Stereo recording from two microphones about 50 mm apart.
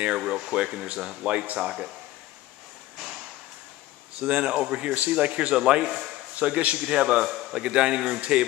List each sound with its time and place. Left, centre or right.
0.2 s a man's voice: centre
4.2 s a man's voice: right
5.5 s a man's voice: centre
6.8 s a man's voice: centre